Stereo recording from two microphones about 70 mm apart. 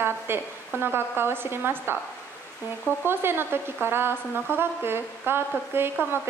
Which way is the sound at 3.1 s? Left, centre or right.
Right.